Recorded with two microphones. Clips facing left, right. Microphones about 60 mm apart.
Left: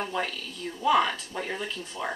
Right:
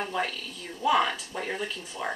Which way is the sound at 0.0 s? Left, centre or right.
Centre.